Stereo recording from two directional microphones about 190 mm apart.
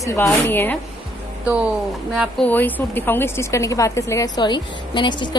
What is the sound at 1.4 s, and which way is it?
Speech, 5° right (ahead or behind).